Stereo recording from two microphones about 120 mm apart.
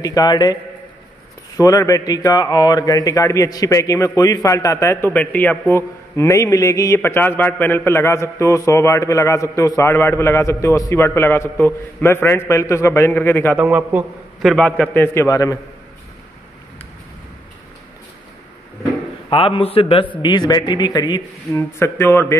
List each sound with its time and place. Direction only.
0.0 s speech: 30° left (ahead or behind)
1.6 s a man's voice: 30° left (ahead or behind)
5.1 s a man's voice: 15° left (ahead or behind)
13.6 s a man's voice: 10° right (ahead or behind)
14.4 s a man's voice: 5° left (ahead or behind)
15.1 s a man's voice: 25° left (ahead or behind)
19.2 s a man's voice: 45° left (ahead or behind)
20.2 s speech: 40° left (ahead or behind)
21.5 s a man's voice: 20° left (ahead or behind)